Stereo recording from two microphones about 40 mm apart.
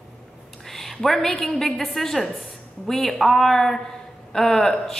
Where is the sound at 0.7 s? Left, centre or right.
Centre.